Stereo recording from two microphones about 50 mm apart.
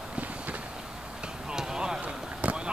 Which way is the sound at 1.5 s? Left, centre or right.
Centre.